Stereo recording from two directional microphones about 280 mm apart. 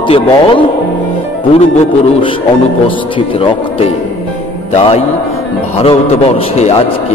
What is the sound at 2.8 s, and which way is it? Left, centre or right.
Speech, centre.